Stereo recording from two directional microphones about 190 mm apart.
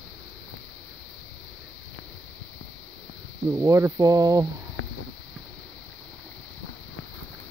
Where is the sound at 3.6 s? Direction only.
15° right (ahead or behind).